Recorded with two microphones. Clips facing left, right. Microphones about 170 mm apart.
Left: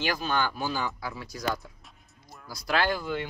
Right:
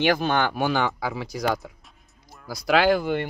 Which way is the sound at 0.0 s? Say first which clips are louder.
Right 7 dB; 65° right (ahead or behind).